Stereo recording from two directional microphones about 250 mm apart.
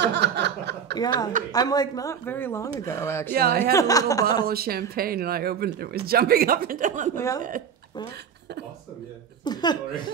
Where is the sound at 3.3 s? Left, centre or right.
Right.